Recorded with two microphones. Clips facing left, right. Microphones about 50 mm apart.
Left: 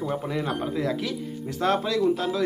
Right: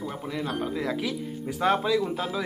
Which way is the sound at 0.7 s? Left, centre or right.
Centre.